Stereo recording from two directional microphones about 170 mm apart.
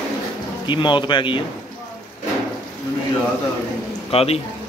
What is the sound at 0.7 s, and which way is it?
Speech, 30° left (ahead or behind).